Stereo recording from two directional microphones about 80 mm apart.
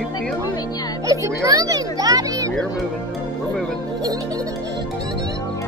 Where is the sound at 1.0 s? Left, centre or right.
Right.